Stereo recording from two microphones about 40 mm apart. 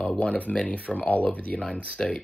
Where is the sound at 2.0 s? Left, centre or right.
Centre.